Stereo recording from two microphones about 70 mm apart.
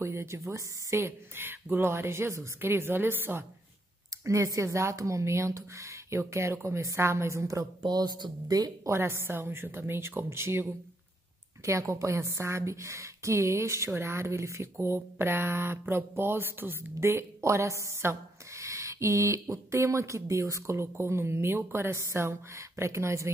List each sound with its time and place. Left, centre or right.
0.0 s a woman's voice: right
4.2 s a woman's voice: right
7.8 s speech: right
8.9 s a woman's voice: right